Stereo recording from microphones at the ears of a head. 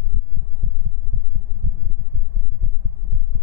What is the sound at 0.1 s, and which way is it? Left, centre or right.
Heart sounds, right.